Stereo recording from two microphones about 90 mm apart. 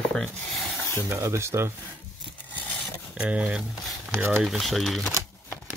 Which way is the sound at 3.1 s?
15° right (ahead or behind).